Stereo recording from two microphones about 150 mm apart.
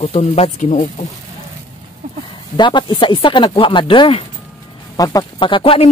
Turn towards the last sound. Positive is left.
turn(degrees=40)  # may be behind; listen again after turning